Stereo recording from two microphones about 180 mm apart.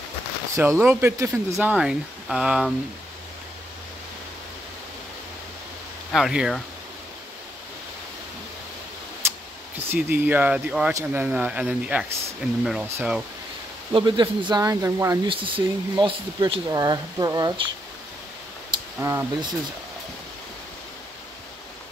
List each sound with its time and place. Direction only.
0.6 s speech: 10° right (ahead or behind)
6.1 s speech: centre (ahead or behind)
9.8 s speech: 10° right (ahead or behind)
13.9 s speech: 25° right (ahead or behind)
15.2 s speech: 30° right (ahead or behind)
18.9 s speech: 15° right (ahead or behind)